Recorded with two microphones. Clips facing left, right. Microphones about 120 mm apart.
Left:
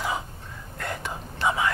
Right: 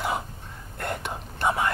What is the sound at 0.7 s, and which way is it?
Whispering, 55° right (ahead or behind).